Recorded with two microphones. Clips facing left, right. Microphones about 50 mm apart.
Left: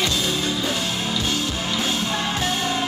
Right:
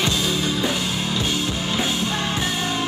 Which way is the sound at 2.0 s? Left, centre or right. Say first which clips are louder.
Even; centre.